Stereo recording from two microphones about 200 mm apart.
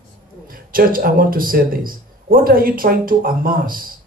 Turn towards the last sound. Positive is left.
turn(degrees=-45)  # may be behind; listen again after turning